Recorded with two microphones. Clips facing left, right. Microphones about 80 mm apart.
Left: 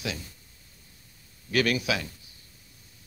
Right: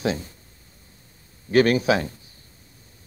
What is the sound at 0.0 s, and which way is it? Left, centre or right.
Speech, right.